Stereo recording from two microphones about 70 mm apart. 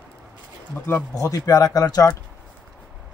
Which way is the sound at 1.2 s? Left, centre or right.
Left.